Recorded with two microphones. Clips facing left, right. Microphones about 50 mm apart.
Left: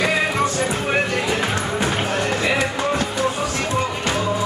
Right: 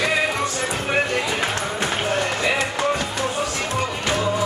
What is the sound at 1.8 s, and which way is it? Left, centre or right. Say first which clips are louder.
Music: even; centre.